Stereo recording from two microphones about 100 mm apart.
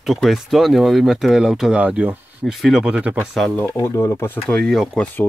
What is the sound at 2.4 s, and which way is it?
Speech, centre (ahead or behind).